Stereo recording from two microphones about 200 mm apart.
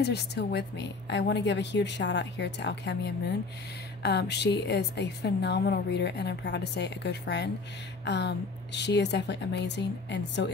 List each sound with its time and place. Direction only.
0.0 s a woman's voice: 55° left (ahead or behind)